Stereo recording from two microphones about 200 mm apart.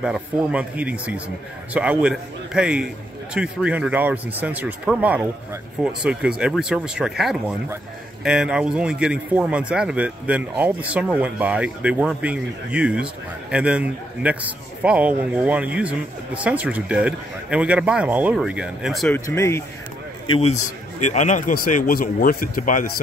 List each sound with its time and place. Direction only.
0.0 s speech: 5° right (ahead or behind)
19.1 s speech: 15° left (ahead or behind)
20.3 s a man's voice: 35° left (ahead or behind)